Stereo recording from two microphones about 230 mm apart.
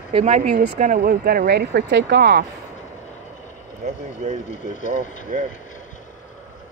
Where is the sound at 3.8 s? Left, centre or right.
Right.